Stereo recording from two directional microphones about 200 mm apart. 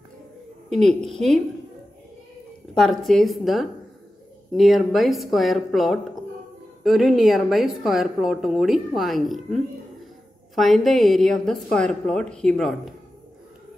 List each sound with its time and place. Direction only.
0.7 s a woman's voice: centre (ahead or behind)
2.7 s a woman's voice: centre (ahead or behind)